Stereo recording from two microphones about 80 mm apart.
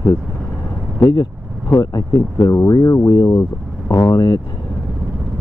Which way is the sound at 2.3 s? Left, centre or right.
Left.